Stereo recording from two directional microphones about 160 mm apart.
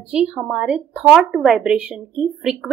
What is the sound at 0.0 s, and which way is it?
A woman's voice, 5° right (ahead or behind).